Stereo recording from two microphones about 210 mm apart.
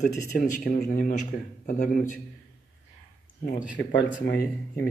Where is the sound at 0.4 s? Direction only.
40° left (ahead or behind).